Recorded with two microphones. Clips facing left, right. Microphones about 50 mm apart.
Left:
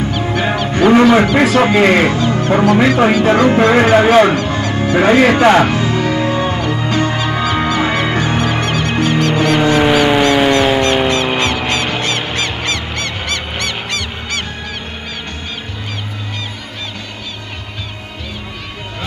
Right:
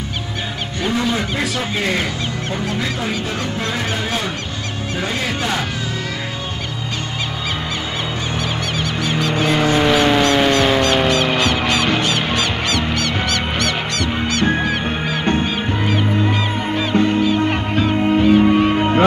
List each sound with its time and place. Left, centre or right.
0.7 s speech: left
7.8 s music: left
9.8 s a sound: centre
11.6 s music: left